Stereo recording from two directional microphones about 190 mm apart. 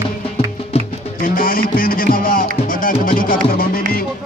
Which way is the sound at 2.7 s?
45° left (ahead or behind).